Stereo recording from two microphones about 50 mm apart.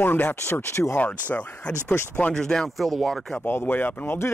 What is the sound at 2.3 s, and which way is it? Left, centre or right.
Speech, centre.